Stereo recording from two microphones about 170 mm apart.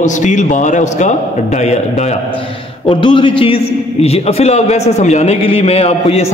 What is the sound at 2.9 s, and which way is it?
A man's voice, 30° left (ahead or behind).